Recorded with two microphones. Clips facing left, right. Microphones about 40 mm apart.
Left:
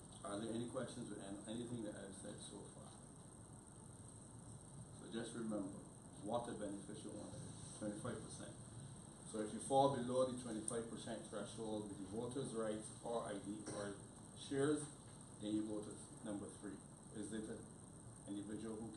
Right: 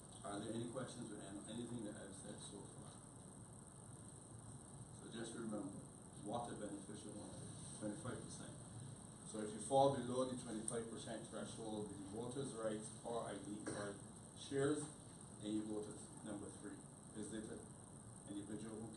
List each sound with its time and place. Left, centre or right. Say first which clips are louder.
0.2 s a man's voice: left 1 dB; centre
5.0 s a man's voice: left 2 dB; centre